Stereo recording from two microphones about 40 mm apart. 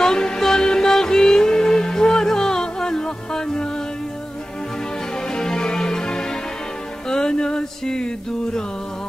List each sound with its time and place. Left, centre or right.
0.0 s music: centre
5.3 s music: centre
7.1 s a sound: centre